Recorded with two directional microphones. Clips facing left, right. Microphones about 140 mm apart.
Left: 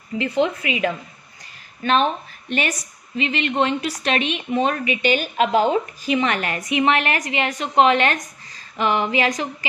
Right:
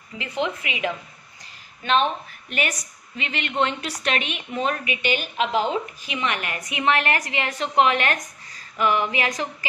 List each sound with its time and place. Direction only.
0.2 s a woman's voice: 40° left (ahead or behind)
2.5 s a woman's voice: 25° left (ahead or behind)
5.0 s a woman's voice: 40° left (ahead or behind)
6.7 s a woman's voice: 20° left (ahead or behind)